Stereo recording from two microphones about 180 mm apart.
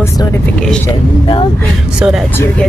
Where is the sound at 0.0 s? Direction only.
15° left (ahead or behind).